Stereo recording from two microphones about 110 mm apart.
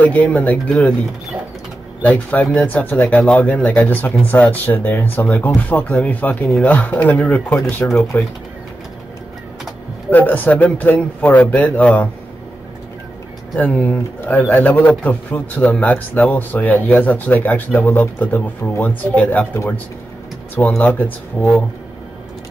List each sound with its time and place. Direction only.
0.0 s speech: 15° left (ahead or behind)
2.0 s speech: 15° left (ahead or behind)
10.1 s speech: 15° left (ahead or behind)
13.6 s speech: 15° left (ahead or behind)
20.8 s speech: 15° left (ahead or behind)